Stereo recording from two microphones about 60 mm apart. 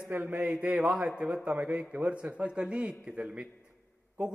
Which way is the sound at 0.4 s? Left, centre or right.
Right.